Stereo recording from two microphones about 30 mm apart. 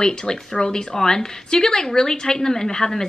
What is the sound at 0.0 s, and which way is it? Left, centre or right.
Speech, left.